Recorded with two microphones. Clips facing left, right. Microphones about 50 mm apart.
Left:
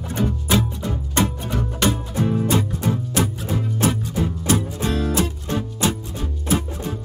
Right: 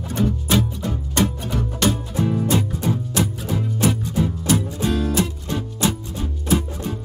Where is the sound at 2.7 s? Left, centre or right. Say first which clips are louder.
Even; left.